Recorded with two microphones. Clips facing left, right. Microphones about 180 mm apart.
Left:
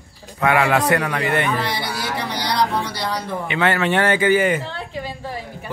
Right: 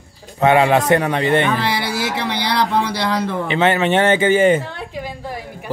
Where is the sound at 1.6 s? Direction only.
85° right.